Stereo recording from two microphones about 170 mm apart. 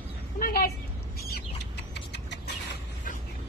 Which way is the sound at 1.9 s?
85° left.